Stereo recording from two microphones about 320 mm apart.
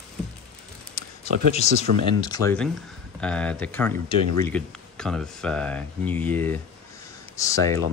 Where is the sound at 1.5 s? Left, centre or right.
Left.